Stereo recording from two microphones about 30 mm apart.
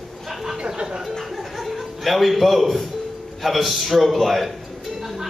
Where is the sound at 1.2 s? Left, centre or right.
Centre.